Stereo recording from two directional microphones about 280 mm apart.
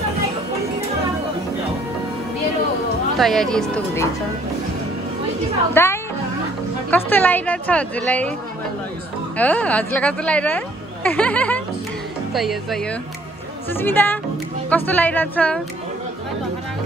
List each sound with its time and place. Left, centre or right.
3.2 s a woman's voice: centre
5.8 s a woman's voice: centre
9.4 s a woman's voice: centre
13.7 s a woman's voice: centre